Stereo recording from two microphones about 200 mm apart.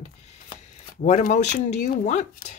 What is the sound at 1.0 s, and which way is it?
Speech, 35° left (ahead or behind).